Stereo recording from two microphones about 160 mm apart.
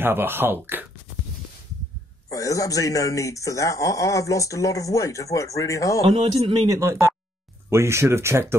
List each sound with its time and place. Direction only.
0.0 s speech: 15° right (ahead or behind)
2.3 s speech: 20° left (ahead or behind)
6.0 s speech: 40° right (ahead or behind)
6.7 s speech: 20° right (ahead or behind)